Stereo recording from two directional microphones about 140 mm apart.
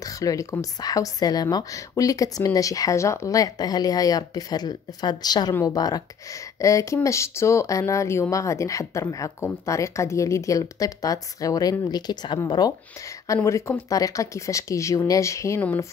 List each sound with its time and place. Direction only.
0.0 s a woman's voice: 25° left (ahead or behind)